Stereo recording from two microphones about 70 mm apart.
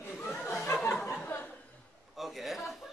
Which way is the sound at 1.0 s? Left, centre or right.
Left.